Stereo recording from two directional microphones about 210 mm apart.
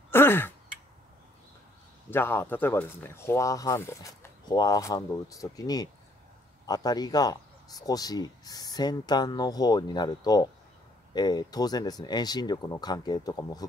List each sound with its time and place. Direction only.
0.1 s sigh: 10° left (ahead or behind)
2.0 s speech: 10° left (ahead or behind)